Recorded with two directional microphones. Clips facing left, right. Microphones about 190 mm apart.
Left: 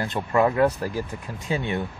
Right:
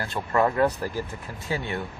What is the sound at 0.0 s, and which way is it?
Speech, 15° left (ahead or behind).